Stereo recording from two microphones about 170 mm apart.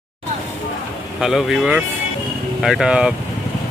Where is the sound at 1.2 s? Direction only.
Centre (ahead or behind).